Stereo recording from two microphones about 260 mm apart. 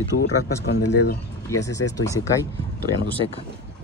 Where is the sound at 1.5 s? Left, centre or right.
Centre.